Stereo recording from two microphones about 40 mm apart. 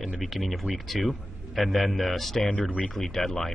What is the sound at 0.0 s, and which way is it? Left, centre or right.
A man's voice, centre.